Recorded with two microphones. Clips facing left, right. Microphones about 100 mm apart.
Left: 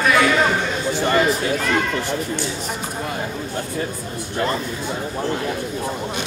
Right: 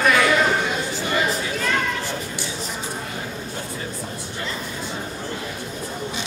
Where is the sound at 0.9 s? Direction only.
55° left (ahead or behind).